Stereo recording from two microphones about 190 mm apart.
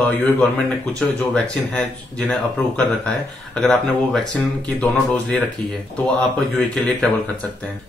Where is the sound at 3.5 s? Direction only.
Centre (ahead or behind).